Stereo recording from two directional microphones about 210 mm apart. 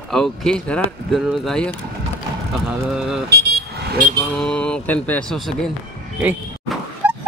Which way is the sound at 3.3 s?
50° right (ahead or behind).